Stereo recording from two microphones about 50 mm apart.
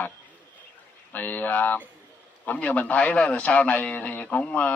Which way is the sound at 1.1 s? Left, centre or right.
Left.